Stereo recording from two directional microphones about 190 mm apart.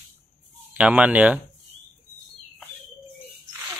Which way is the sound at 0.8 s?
5° right (ahead or behind).